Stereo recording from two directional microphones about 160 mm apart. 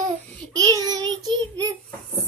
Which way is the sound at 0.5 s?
25° right (ahead or behind).